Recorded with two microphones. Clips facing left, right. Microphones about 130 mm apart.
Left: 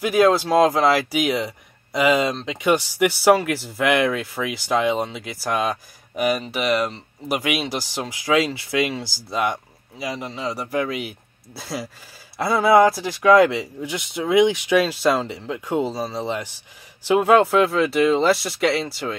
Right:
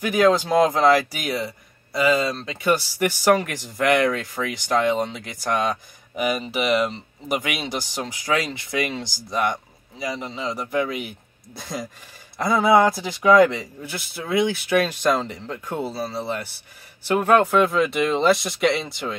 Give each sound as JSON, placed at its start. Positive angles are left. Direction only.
{"t": 0.1, "sound": "speech", "side_deg": 5}